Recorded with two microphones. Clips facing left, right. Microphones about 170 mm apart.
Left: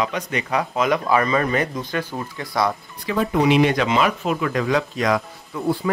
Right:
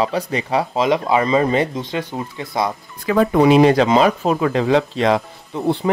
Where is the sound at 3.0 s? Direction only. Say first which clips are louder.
Right 6 dB; 50° right (ahead or behind).